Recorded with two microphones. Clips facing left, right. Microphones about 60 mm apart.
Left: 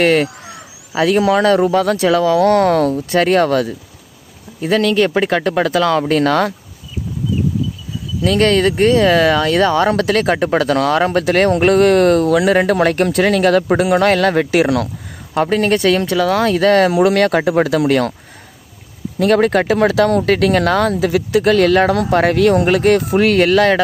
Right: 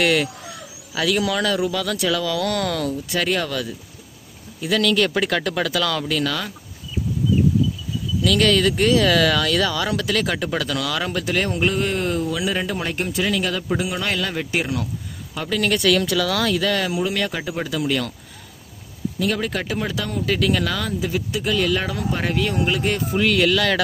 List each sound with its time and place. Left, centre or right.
0.0 s speech: left
8.2 s speech: left
15.3 s speech: left
19.1 s speech: left
20.9 s speech: left